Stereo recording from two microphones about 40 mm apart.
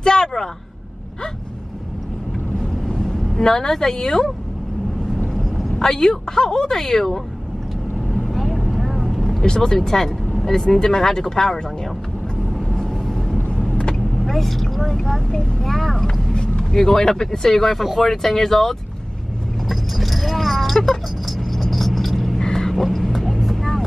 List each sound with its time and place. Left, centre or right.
0.0 s a sound: centre
2.6 s vehicle: centre
5.8 s speech: centre
8.1 s vehicle: centre
9.4 s speech: centre
13.0 s vehicle: centre
13.7 s vehicle: left
14.2 s speech: centre
19.7 s vehicle: centre
22.4 s a sound: centre
22.8 s vehicle: centre